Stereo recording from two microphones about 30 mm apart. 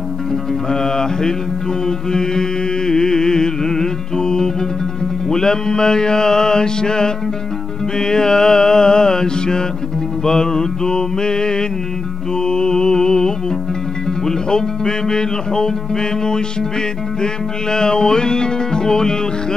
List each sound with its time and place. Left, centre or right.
0.7 s music: left